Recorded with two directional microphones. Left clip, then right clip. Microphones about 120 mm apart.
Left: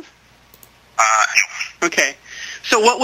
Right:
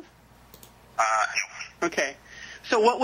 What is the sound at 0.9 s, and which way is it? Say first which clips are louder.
Speech: left 9 dB; 20° left (ahead or behind).